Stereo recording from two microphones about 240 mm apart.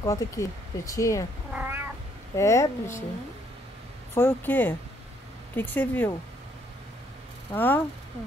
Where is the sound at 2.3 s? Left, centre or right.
Centre.